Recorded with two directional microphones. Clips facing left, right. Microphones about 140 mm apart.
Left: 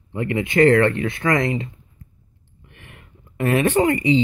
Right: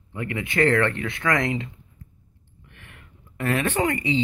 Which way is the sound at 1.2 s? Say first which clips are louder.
Left 4 dB; 30° left (ahead or behind).